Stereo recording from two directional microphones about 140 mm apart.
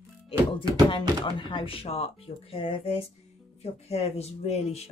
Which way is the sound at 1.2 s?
35° left (ahead or behind).